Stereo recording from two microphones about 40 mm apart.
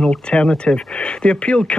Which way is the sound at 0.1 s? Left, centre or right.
Left.